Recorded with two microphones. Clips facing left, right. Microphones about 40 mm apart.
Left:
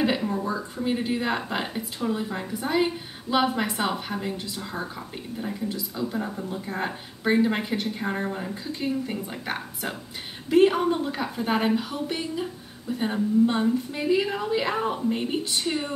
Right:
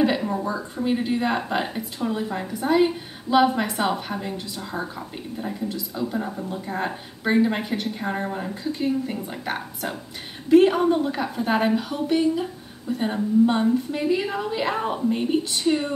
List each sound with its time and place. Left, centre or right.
0.2 s a sound: centre
0.5 s a woman's voice: centre
15.0 s a woman's voice: centre